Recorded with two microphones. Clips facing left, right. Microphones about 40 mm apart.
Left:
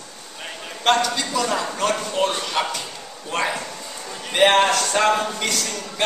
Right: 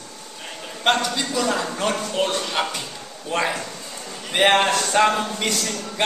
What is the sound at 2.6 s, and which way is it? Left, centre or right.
Speech, centre.